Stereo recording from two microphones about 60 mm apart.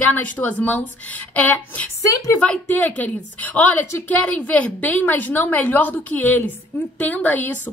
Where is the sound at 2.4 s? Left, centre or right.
Centre.